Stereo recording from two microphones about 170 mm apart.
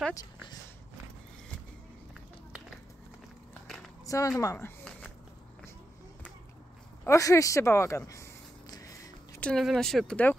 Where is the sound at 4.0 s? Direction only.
20° left (ahead or behind).